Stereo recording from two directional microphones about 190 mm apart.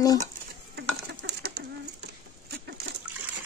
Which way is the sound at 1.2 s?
60° right (ahead or behind).